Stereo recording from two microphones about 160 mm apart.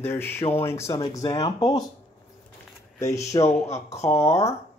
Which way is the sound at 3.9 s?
40° left (ahead or behind).